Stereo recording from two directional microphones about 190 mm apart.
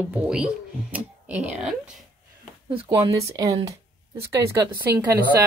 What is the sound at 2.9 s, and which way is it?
Speech, 15° right (ahead or behind).